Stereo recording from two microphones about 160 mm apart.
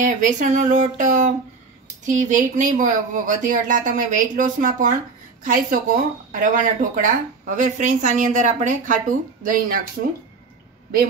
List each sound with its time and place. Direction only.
0.0 s a woman's voice: 55° right (ahead or behind)